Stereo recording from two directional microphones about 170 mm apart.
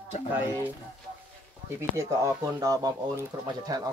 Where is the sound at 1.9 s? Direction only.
15° right (ahead or behind).